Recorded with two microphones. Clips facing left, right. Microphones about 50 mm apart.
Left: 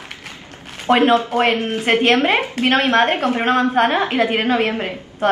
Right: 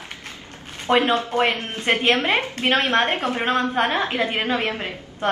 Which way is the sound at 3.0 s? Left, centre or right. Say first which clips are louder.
Left 5 dB; centre.